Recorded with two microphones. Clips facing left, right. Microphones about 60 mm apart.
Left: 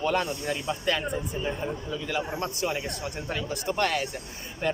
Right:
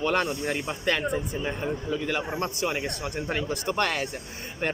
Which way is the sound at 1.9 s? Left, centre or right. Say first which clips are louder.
Right 2 dB; right.